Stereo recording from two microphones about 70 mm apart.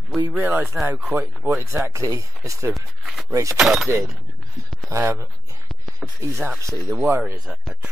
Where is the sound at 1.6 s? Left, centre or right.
Right.